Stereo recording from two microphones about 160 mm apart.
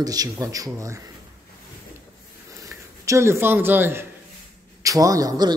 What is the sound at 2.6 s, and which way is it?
A man's voice, 20° right (ahead or behind).